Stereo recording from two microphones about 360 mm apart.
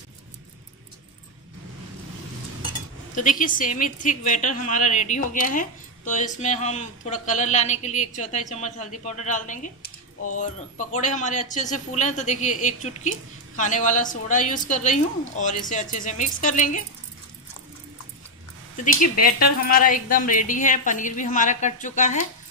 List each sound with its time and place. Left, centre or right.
3.2 s a woman's voice: left
19.2 s a woman's voice: left